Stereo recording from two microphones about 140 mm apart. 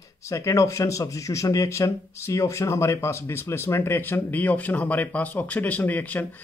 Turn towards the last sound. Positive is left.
turn(degrees=10)  # may be behind; listen again after turning